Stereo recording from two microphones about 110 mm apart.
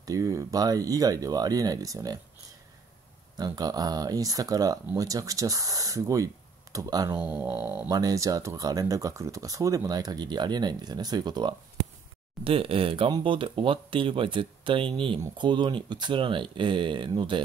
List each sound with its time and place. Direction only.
0.0 s speech: 30° right (ahead or behind)
3.3 s speech: 35° right (ahead or behind)
7.2 s speech: 15° right (ahead or behind)
7.9 s speech: 35° right (ahead or behind)
12.4 s speech: 60° right (ahead or behind)